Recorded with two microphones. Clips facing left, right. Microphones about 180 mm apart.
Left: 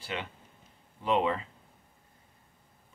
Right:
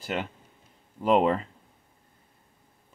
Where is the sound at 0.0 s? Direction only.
40° right (ahead or behind).